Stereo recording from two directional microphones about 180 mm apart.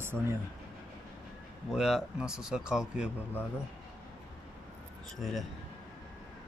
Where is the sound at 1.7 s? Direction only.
Centre (ahead or behind).